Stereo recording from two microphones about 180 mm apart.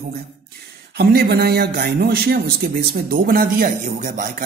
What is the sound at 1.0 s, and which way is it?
A man's voice, 60° right (ahead or behind).